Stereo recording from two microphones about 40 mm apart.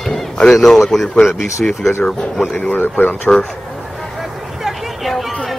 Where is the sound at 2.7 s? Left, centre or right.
Left.